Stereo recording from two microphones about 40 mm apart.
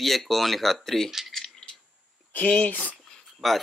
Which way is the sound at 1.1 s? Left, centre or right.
Centre.